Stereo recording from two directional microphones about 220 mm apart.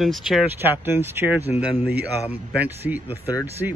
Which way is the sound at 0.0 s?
Centre (ahead or behind).